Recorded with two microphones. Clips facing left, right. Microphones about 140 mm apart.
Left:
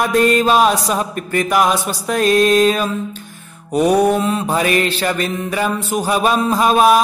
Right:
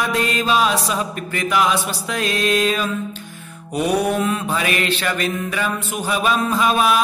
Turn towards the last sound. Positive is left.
turn(degrees=40)  # may be behind; listen again after turning